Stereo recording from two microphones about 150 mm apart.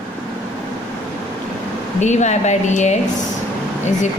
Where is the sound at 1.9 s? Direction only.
50° left (ahead or behind).